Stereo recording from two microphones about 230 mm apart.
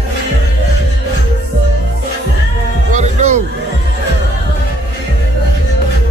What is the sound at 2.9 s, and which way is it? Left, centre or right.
Music, right.